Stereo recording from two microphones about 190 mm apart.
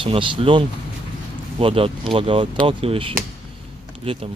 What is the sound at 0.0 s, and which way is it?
Speech, 30° right (ahead or behind).